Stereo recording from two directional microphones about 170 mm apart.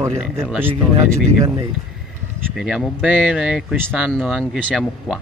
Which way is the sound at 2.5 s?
Centre (ahead or behind).